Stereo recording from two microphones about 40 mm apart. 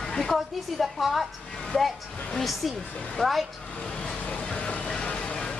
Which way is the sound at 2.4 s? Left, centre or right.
Centre.